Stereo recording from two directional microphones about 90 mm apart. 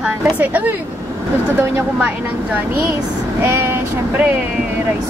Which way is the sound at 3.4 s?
25° right (ahead or behind).